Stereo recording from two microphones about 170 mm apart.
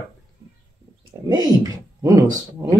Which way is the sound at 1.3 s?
20° right (ahead or behind).